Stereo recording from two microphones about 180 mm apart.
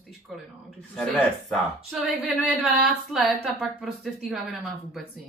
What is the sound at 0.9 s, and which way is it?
Speech, centre (ahead or behind).